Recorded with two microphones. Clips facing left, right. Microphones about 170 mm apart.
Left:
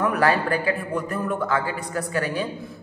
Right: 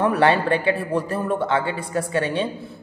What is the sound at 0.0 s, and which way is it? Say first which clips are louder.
Speech: right 3 dB; 30° right (ahead or behind).